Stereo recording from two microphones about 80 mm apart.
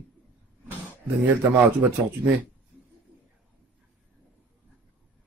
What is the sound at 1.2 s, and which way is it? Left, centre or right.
Speech, centre.